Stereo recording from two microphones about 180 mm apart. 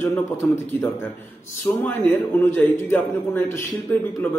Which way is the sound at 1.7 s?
15° left (ahead or behind).